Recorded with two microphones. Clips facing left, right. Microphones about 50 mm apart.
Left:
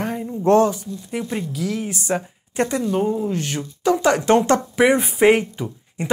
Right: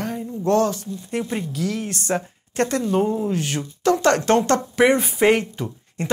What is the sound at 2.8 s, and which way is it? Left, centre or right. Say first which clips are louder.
Speech: even; centre.